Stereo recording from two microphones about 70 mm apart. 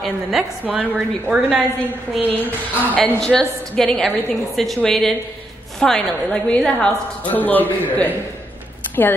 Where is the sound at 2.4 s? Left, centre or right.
Left.